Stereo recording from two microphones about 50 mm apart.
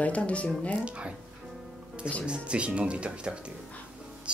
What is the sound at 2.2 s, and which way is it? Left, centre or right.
Speech, right.